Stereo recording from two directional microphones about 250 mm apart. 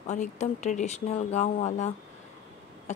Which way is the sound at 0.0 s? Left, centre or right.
Left.